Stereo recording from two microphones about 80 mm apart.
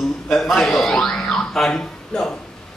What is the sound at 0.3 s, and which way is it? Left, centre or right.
A man's voice, centre.